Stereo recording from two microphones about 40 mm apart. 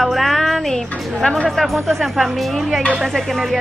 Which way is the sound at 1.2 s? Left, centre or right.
Left.